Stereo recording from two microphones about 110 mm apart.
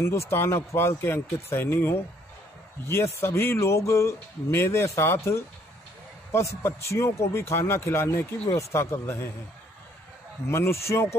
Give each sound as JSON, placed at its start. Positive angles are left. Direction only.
{"t": 0.0, "sound": "speech", "side_deg": 25}
{"t": 10.5, "sound": "speech", "side_deg": 25}